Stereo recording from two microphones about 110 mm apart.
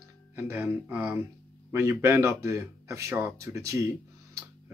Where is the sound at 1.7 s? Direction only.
25° right (ahead or behind).